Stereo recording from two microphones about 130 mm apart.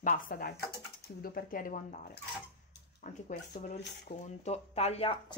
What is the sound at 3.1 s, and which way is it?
Speech, 80° left.